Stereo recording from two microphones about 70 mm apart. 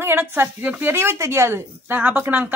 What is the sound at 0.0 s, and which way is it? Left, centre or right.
Speech, right.